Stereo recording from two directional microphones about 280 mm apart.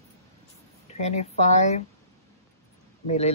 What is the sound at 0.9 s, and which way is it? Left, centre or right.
Speech, left.